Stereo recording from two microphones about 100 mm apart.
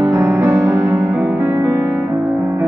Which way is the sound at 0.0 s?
25° right (ahead or behind).